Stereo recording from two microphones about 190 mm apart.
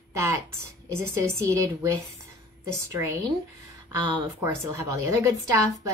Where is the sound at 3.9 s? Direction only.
15° right (ahead or behind).